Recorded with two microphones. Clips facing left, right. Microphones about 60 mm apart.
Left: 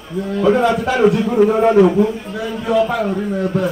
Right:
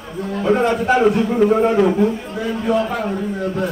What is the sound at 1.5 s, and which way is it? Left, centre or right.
Speech, left.